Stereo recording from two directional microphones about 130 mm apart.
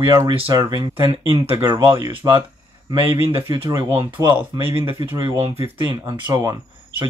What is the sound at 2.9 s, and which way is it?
Speech, 45° right (ahead or behind).